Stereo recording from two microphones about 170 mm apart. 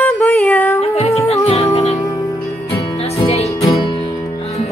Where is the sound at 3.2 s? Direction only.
35° left (ahead or behind).